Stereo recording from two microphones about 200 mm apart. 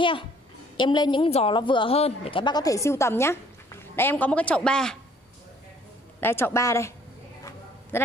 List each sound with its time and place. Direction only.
0.7 s a woman's voice: 20° left (ahead or behind); by 4.9 s 5° left (ahead or behind)
6.2 s a man's voice: 10° left (ahead or behind)
7.9 s a sound: 10° left (ahead or behind)